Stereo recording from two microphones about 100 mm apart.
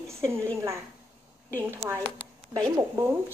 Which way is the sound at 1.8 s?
90° right.